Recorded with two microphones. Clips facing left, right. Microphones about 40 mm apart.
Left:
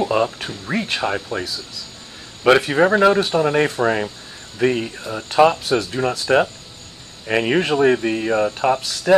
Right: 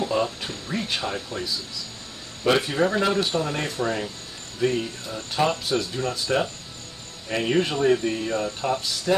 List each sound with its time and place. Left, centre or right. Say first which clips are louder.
0.1 s speech: left 5 dB; left
2.4 s speech: left 7 dB; left
5.1 s speech: left 10 dB; left
5.5 s speech: left 5 dB; left
7.2 s speech: left 5 dB; left